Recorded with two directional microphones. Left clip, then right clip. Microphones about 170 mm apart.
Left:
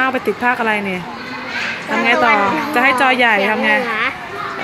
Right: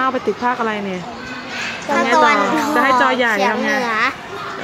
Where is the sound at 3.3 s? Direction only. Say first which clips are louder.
Left 2 dB; 50° right (ahead or behind).